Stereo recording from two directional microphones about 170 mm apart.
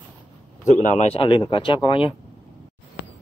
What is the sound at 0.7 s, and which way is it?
Speech, 45° left (ahead or behind).